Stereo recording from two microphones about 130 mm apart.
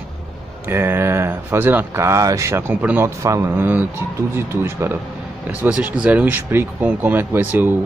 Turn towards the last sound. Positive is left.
turn(degrees=-15)  # may be behind; listen again after turning